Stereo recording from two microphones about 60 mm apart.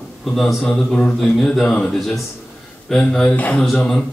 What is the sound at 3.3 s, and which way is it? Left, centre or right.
Speech, left.